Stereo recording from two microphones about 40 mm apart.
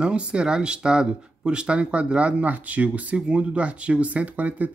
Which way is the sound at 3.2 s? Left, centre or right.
Right.